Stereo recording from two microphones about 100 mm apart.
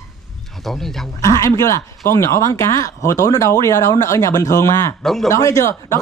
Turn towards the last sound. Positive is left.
turn(degrees=30)  # may be behind; listen again after turning